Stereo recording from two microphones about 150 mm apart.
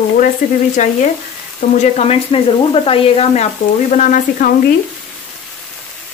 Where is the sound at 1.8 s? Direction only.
45° left (ahead or behind).